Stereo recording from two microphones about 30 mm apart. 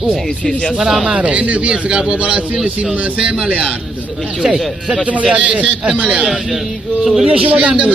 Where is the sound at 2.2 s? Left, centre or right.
Right.